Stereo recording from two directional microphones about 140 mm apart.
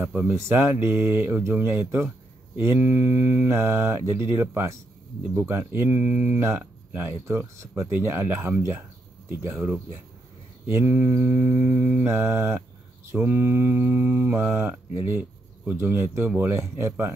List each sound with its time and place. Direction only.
0.0 s mantra: 15° right (ahead or behind)